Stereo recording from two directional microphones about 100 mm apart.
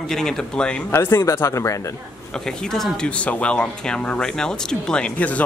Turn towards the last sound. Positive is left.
turn(degrees=15)  # may be behind; listen again after turning